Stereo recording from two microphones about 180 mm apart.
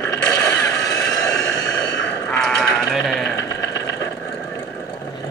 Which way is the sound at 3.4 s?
20° left (ahead or behind).